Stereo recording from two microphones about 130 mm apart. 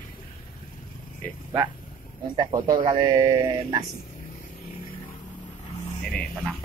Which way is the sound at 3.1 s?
30° right (ahead or behind).